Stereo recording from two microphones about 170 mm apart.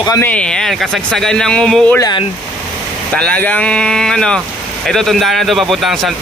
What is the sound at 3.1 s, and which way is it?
A man's voice, 10° left (ahead or behind).